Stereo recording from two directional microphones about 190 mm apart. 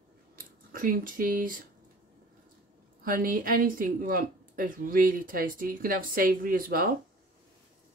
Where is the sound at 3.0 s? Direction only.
45° right (ahead or behind).